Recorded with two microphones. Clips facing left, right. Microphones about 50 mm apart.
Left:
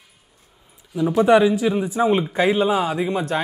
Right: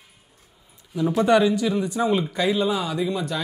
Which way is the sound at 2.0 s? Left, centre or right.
Left.